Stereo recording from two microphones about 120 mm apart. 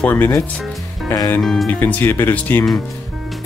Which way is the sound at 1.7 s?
15° left (ahead or behind).